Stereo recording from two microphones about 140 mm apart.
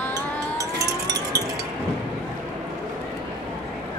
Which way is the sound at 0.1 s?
25° right (ahead or behind).